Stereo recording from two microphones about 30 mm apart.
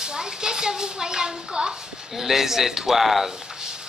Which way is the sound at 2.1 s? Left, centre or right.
Centre.